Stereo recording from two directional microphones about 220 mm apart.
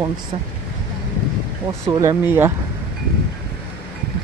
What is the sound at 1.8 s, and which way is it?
Speech, 15° right (ahead or behind).